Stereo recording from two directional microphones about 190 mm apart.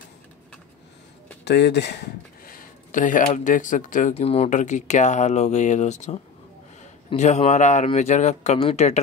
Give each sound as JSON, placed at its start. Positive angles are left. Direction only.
{"t": 1.4, "sound": "speech", "side_deg": 65}